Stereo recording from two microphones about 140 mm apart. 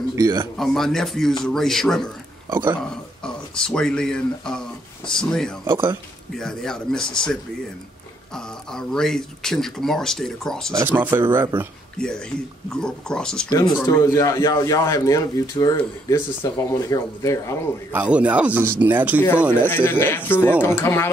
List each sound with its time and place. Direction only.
0.1 s speech: 20° right (ahead or behind)
0.6 s speech: 5° left (ahead or behind)
2.5 s a man's voice: 15° right (ahead or behind)
2.8 s speech: 5° left (ahead or behind)
5.7 s a man's voice: 15° right (ahead or behind)
6.3 s speech: 5° left (ahead or behind)
8.7 s speech: 5° left (ahead or behind)
10.7 s a man's voice: 25° right (ahead or behind)
12.6 s speech: 5° left (ahead or behind)
14.0 s speech: 25° left (ahead or behind)
17.9 s a man's voice: 10° right (ahead or behind)
19.6 s speech: 15° left (ahead or behind)